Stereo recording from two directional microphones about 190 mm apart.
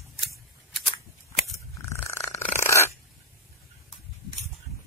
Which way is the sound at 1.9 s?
15° left (ahead or behind).